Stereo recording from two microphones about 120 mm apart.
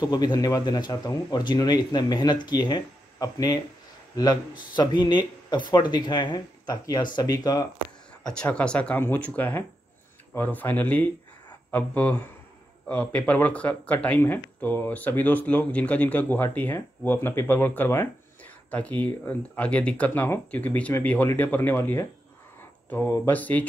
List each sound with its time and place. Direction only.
0.0 s speech: 35° left (ahead or behind)
8.3 s speech: 10° left (ahead or behind)